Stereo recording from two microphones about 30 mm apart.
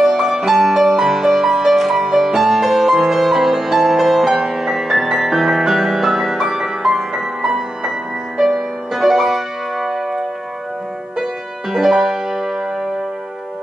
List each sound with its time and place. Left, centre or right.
0.0 s music: centre
8.9 s music: centre
11.7 s music: centre